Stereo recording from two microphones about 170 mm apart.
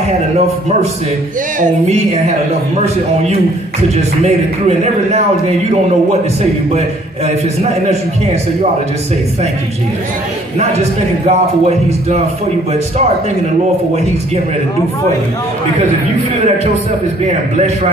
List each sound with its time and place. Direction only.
1.6 s speech: 45° right (ahead or behind)
3.9 s a man's voice: 40° right (ahead or behind)
7.6 s a man's voice: 40° right (ahead or behind)
10.8 s a man's voice: 40° right (ahead or behind)